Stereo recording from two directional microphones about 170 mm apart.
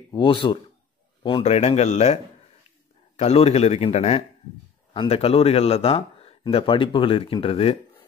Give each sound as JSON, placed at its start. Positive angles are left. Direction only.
{"t": 0.1, "sound": "a man's voice", "side_deg": 30}
{"t": 3.2, "sound": "a man's voice", "side_deg": 35}